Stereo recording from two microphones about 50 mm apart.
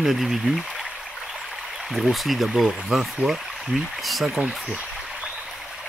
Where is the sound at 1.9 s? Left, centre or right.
Centre.